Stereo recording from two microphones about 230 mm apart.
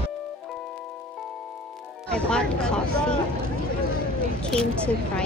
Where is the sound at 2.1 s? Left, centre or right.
Centre.